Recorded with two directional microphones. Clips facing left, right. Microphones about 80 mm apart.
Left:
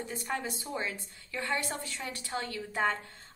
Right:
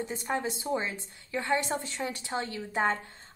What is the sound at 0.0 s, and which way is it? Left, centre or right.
A woman's voice, right.